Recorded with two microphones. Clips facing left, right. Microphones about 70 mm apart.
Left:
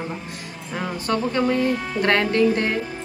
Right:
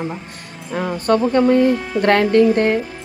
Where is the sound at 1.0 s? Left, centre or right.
Right.